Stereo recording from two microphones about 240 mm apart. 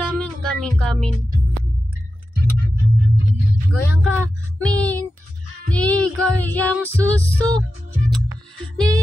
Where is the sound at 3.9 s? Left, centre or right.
Centre.